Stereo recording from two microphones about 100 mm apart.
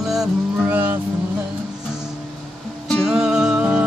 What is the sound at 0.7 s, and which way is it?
Cattle, 20° right (ahead or behind).